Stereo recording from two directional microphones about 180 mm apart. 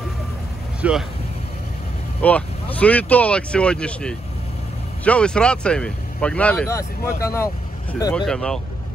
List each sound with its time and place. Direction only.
0.8 s speech: 10° right (ahead or behind)
2.2 s speech: 10° left (ahead or behind)
8.3 s speech: 5° left (ahead or behind)